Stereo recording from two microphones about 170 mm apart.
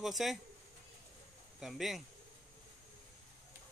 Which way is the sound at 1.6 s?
Centre (ahead or behind).